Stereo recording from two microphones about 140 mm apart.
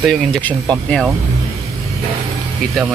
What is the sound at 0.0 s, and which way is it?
Speech, 5° left (ahead or behind).